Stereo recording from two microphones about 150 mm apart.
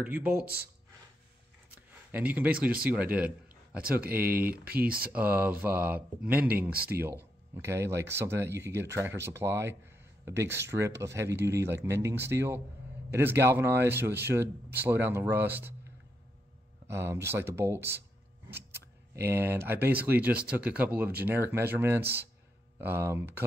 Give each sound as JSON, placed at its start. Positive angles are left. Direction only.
{"t": 0.0, "sound": "speech", "side_deg": -10}
{"t": 2.1, "sound": "speech", "side_deg": -10}
{"t": 4.5, "sound": "speech", "side_deg": -80}
{"t": 5.0, "sound": "speech", "side_deg": -10}
{"t": 6.7, "sound": "speech", "side_deg": -90}
{"t": 7.0, "sound": "speech", "side_deg": -15}
{"t": 16.8, "sound": "speech", "side_deg": -15}